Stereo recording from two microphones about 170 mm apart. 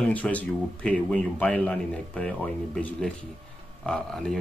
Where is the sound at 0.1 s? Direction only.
10° left (ahead or behind).